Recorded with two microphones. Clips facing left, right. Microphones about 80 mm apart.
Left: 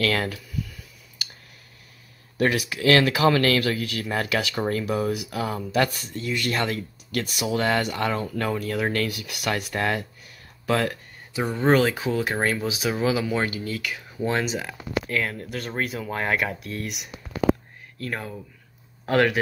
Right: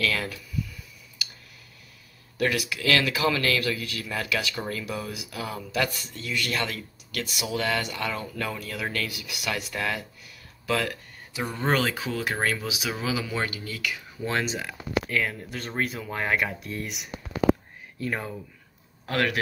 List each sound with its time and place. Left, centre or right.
0.0 s speech: left
2.3 s speech: left
6.2 s speech: left
10.7 s a sound: left
11.5 s speech: centre
13.5 s speech: left
14.2 s speech: centre
19.0 s speech: left